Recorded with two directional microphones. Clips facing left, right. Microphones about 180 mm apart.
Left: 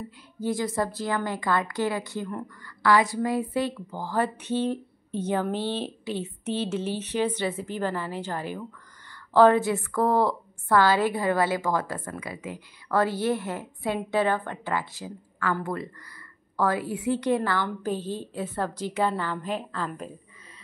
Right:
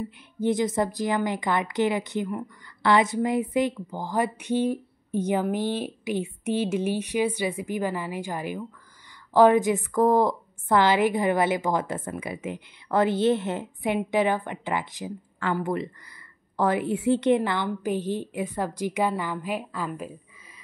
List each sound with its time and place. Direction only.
0.4 s a woman's voice: 20° right (ahead or behind)